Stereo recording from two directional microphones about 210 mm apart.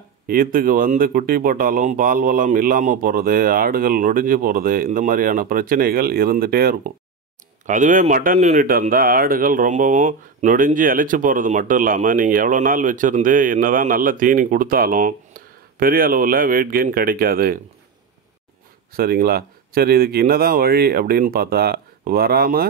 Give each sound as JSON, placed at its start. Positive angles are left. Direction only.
{"t": 0.3, "sound": "speech", "side_deg": -45}
{"t": 18.9, "sound": "speech", "side_deg": -45}